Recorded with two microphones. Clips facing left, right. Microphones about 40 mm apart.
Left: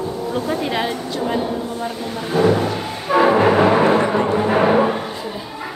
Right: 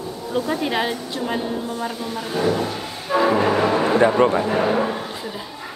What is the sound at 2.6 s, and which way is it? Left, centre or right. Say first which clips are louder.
Music: left 5 dB; left.